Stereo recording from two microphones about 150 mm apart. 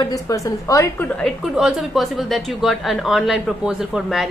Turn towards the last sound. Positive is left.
turn(degrees=0)  # may be behind; listen again after turning